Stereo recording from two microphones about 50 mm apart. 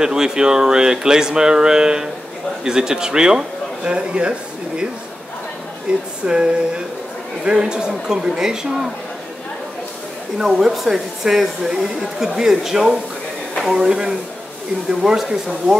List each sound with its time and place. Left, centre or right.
0.0 s speech: centre
5.9 s a sound: centre
7.4 s speech: centre
10.4 s speech: centre